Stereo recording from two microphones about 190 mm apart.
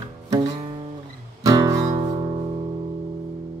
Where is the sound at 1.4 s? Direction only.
20° right (ahead or behind).